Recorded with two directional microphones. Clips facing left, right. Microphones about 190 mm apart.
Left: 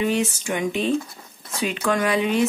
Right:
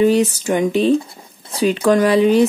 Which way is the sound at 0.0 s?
35° right (ahead or behind).